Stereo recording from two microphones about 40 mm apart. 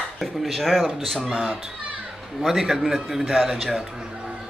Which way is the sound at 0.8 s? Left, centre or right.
Centre.